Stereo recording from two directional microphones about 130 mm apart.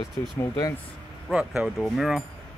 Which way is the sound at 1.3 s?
5° right (ahead or behind).